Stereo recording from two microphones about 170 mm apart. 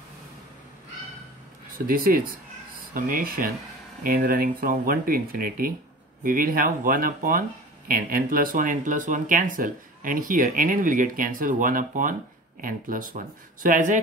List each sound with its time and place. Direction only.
1.9 s speech: 55° right (ahead or behind)